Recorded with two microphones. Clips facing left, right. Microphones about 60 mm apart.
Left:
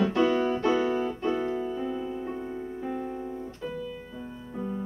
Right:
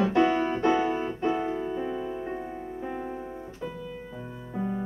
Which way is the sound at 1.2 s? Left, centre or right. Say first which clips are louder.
Right 1 dB; centre.